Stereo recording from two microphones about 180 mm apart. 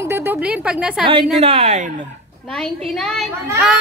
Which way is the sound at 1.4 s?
35° right (ahead or behind).